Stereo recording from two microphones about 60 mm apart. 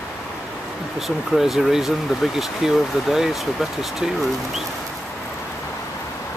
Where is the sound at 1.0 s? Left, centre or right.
Centre.